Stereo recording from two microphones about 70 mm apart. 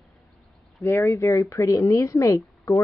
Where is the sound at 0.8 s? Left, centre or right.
Left.